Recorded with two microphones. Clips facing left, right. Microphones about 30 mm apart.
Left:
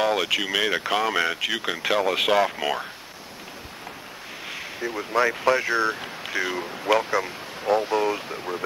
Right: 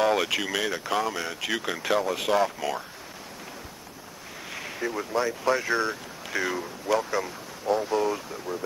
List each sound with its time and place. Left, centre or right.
0.0 s speech: centre
0.7 s speech: left
1.6 s speech: left
2.0 s speech: left
4.5 s a sound: centre
5.4 s speech: left
5.7 s speech: centre
6.6 s speech: left
7.1 s speech: left